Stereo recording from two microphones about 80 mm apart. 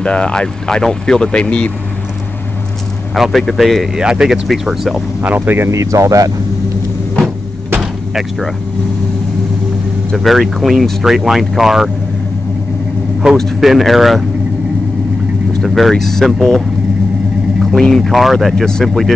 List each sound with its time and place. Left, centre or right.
0.0 s speech: centre
3.2 s speech: centre
5.2 s speech: right
5.7 s speech: right
7.8 s door: centre
10.1 s speech: centre
13.4 s speech: centre
15.6 s speech: centre